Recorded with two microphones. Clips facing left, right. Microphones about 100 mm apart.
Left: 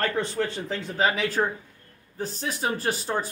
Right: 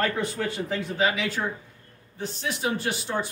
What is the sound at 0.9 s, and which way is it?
Speech, 45° left (ahead or behind).